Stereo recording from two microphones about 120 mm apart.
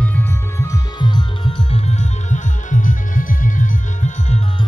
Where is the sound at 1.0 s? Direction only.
40° left (ahead or behind); by 4.4 s 75° left (ahead or behind).